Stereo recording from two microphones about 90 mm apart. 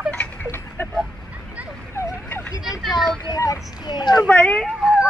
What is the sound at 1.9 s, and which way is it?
Fowl, 25° left (ahead or behind).